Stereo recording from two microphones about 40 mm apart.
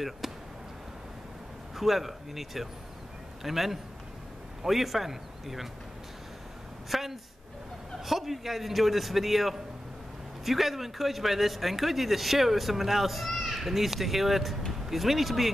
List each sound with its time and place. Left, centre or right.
0.2 s a sound: centre
1.8 s speech: centre
6.9 s speech: centre